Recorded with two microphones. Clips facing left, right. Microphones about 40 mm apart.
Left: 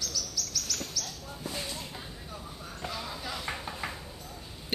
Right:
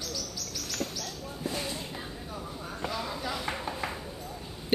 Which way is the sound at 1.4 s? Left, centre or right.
Centre.